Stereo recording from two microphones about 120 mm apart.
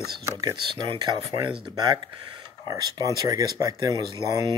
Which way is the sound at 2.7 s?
30° right (ahead or behind).